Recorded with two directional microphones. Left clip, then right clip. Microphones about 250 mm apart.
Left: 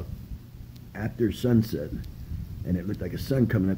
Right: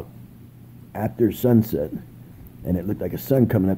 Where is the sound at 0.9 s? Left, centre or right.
Centre.